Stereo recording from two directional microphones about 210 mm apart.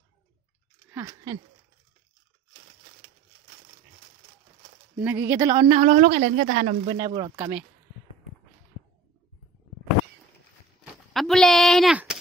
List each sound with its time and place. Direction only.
0.8 s a sound: 15° right (ahead or behind)
4.9 s speech: 10° right (ahead or behind)
5.4 s speech: 20° right (ahead or behind)
5.8 s a woman's voice: 35° right (ahead or behind)
6.9 s speech: 20° right (ahead or behind)
11.1 s a sound: centre (ahead or behind)